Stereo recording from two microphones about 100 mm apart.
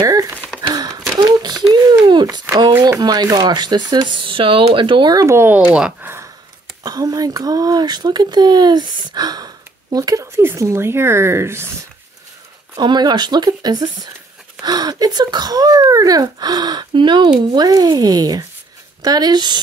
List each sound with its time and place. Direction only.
0.0 s a sound: 40° right (ahead or behind)
3.0 s speech: 40° right (ahead or behind)
5.1 s a woman's voice: 30° right (ahead or behind)
5.8 s speech: 10° right (ahead or behind)
6.8 s speech: 35° right (ahead or behind)
10.2 s a woman's voice: 25° right (ahead or behind)
12.7 s speech: 45° right (ahead or behind)